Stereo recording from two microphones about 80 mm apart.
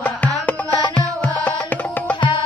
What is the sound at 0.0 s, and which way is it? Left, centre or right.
Music, centre.